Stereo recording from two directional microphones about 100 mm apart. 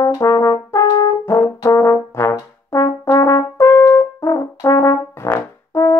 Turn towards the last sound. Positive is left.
turn(degrees=25)  # may be behind; listen again after turning